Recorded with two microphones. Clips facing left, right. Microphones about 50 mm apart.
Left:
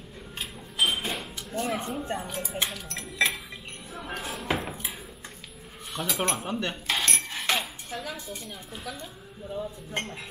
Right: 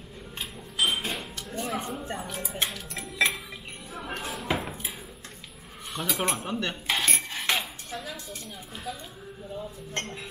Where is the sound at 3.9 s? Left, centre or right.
Centre.